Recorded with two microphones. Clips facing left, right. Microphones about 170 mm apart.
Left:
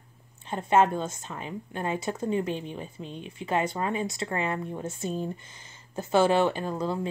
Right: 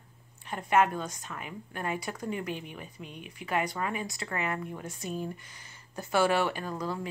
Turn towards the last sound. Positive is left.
turn(degrees=25)  # may be behind; listen again after turning